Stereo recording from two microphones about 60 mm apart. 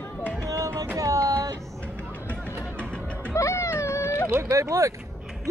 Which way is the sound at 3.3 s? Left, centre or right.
Left.